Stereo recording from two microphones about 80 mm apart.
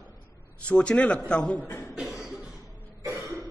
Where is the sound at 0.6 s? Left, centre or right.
Centre.